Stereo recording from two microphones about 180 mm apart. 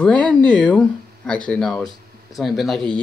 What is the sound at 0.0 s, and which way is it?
Speech, 5° left (ahead or behind).